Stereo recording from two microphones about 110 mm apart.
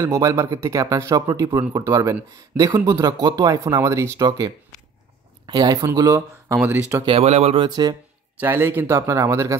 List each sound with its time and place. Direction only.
0.0 s speech: 30° right (ahead or behind)
5.5 s speech: 35° right (ahead or behind)
6.6 s speech: 20° right (ahead or behind)
7.1 s speech: 75° right (ahead or behind)
7.5 s speech: 40° right (ahead or behind)
8.4 s speech: 20° right (ahead or behind)